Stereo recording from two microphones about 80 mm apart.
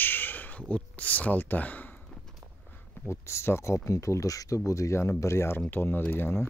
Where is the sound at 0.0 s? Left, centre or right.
Left.